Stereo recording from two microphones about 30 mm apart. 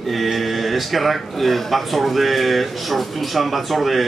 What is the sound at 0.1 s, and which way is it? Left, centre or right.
Speech, centre.